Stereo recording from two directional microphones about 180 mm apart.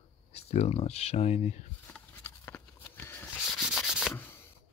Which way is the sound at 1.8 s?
10° left (ahead or behind).